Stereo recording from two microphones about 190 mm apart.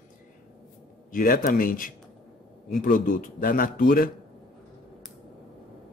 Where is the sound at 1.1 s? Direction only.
45° left (ahead or behind).